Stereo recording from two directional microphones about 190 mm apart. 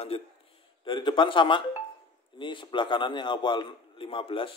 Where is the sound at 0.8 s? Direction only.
25° left (ahead or behind).